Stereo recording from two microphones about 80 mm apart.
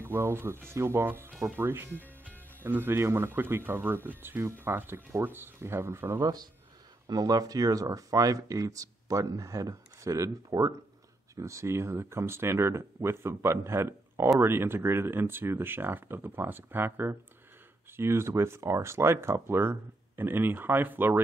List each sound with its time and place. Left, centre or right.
0.0 s speech: right
6.2 s speech: right